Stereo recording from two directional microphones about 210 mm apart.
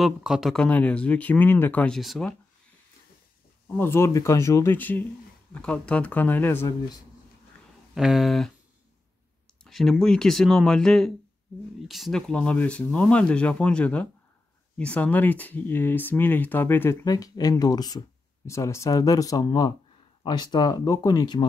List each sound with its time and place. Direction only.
0.0 s speech: centre (ahead or behind)
3.7 s speech: 10° left (ahead or behind)
7.9 s speech: centre (ahead or behind)
9.7 s speech: centre (ahead or behind); by 21.5 s 20° left (ahead or behind)